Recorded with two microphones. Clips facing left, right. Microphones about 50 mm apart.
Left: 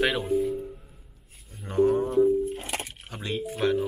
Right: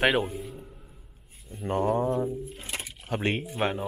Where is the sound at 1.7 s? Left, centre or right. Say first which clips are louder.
Left 3 dB; right.